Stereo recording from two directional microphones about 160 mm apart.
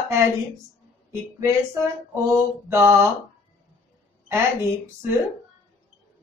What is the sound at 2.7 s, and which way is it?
Speech, 15° right (ahead or behind).